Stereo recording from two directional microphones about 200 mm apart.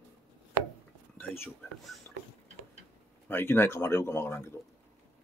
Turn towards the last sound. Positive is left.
turn(degrees=10)  # may be behind; listen again after turning